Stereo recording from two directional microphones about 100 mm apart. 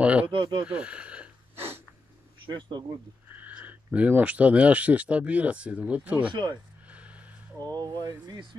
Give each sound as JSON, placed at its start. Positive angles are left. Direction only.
{"t": 0.0, "sound": "speech", "side_deg": -10}
{"t": 0.3, "sound": "speech", "side_deg": -55}
{"t": 0.7, "sound": "speech", "side_deg": -10}
{"t": 2.4, "sound": "speech", "side_deg": -50}
{"t": 3.3, "sound": "speech", "side_deg": -15}
{"t": 6.9, "sound": "a sound", "side_deg": -15}
{"t": 7.7, "sound": "speech", "side_deg": -40}